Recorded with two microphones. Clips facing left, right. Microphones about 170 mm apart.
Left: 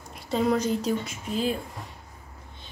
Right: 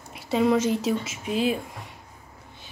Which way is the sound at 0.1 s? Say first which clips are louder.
Right 3 dB; 5° right (ahead or behind).